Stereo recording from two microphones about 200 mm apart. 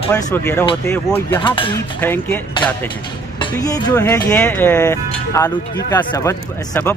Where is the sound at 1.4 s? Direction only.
25° left (ahead or behind).